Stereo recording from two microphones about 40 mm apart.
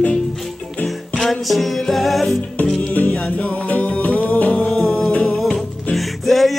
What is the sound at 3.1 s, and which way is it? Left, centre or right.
Music, left.